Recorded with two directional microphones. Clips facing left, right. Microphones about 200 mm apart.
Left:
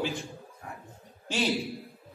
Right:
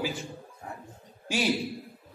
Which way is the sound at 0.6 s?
25° right (ahead or behind).